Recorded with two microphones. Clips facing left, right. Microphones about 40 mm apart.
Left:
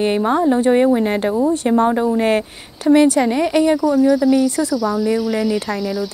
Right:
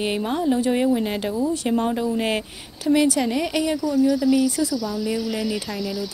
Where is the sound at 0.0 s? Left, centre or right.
Left.